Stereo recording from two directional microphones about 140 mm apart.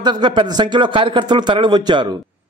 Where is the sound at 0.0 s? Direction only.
30° right (ahead or behind).